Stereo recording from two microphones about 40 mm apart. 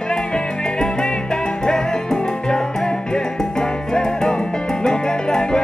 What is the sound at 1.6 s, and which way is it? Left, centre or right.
Music, centre.